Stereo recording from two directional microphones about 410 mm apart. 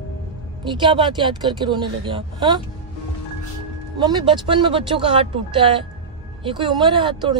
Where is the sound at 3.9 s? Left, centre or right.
Centre.